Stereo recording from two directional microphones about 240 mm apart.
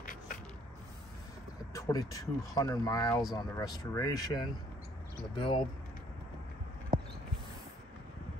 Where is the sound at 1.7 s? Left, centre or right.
Centre.